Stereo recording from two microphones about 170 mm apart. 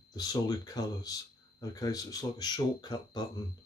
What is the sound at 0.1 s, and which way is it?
Speech, 20° left (ahead or behind).